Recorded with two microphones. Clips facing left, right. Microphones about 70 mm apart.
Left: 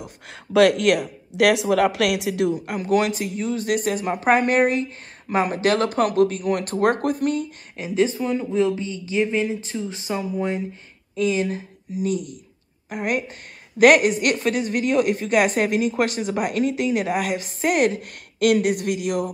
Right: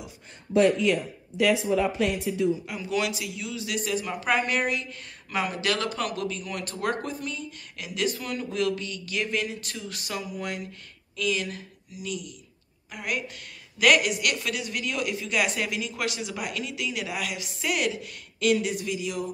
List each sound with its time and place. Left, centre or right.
0.3 s speech: left
7.7 s a man's voice: left